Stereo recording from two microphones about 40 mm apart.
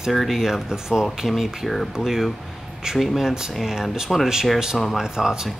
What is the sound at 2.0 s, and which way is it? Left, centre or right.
Speech, centre.